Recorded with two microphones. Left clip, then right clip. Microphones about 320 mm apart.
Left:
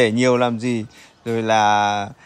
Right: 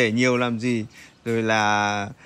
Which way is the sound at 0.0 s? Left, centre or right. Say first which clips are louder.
Left 4 dB; centre.